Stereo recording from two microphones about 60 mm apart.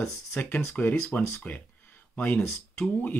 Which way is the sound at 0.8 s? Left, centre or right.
Left.